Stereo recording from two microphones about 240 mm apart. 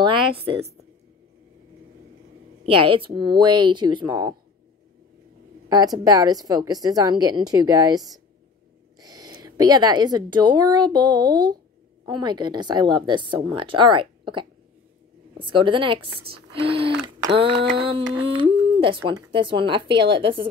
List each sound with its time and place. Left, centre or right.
0.0 s a woman's voice: right
3.2 s a woman's voice: centre
5.7 s a woman's voice: centre
18.3 s humming: right
19.0 s a woman's voice: centre